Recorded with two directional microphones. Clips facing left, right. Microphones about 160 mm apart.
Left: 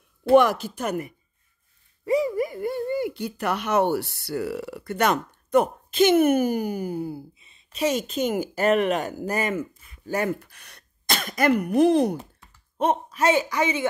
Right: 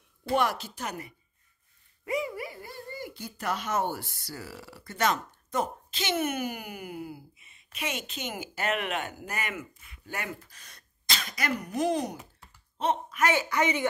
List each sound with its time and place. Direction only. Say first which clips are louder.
0.2 s speech: left 10 dB; 55° left (ahead or behind)
2.0 s a woman's voice: left 9 dB; 35° left (ahead or behind)
10.4 s speech: left 4 dB; 65° left (ahead or behind)
13.1 s speech: left 5 dB; 25° left (ahead or behind)